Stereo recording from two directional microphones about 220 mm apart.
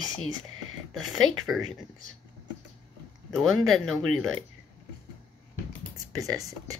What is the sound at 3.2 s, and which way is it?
Speech, centre (ahead or behind).